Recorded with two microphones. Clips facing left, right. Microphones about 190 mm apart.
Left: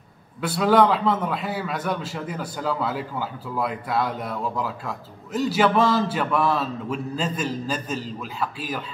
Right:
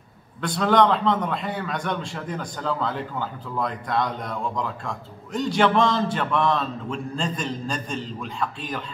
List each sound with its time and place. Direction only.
0.4 s a man's voice: 5° left (ahead or behind)